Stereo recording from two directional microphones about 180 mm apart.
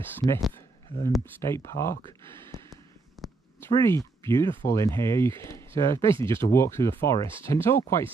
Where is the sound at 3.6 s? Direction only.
15° left (ahead or behind).